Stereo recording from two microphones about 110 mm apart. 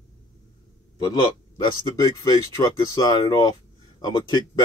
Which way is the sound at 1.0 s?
40° left (ahead or behind).